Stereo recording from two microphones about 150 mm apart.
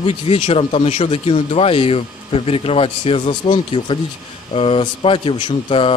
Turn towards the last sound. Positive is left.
turn(degrees=40)  # may be behind; listen again after turning